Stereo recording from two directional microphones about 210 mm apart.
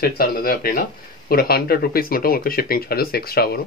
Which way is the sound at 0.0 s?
45° left (ahead or behind).